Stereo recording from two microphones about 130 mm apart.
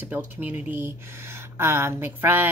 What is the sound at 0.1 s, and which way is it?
A woman's voice, 15° right (ahead or behind).